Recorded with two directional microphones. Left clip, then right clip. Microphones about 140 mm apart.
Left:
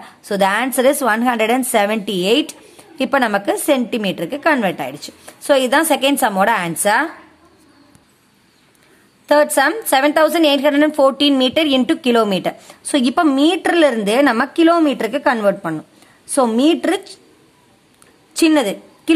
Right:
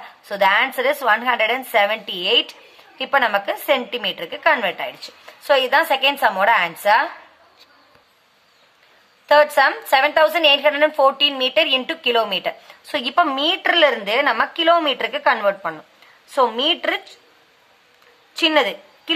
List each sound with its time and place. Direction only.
0.0 s a woman's voice: 40° left (ahead or behind)
9.3 s a woman's voice: 30° left (ahead or behind)
18.3 s a woman's voice: 35° left (ahead or behind)